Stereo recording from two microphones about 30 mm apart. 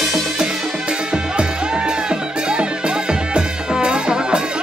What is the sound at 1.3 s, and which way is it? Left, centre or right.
Music, right.